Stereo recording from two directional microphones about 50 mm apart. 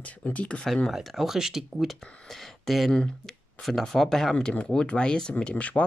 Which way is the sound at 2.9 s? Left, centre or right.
Centre.